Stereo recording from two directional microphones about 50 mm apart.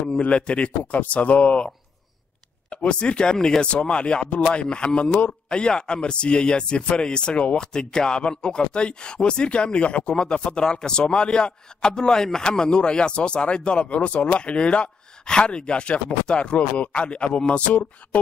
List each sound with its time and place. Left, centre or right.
0.2 s speech: left
2.7 s speech: centre